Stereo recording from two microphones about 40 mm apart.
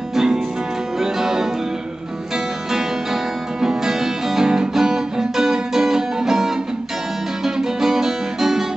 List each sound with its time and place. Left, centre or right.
0.1 s music: centre
3.6 s guitar: centre
7.4 s music: centre